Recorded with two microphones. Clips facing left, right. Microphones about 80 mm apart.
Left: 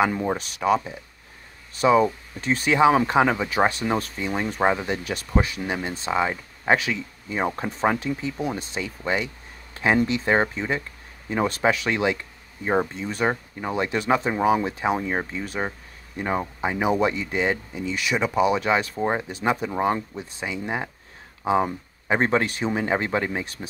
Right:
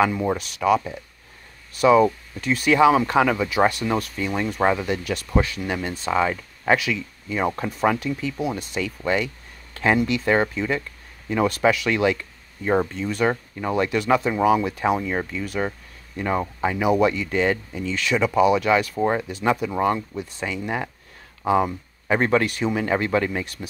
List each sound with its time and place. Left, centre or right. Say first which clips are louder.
0.3 s speech: right 2 dB; left